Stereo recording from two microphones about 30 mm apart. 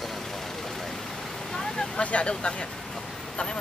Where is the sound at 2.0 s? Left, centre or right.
Left.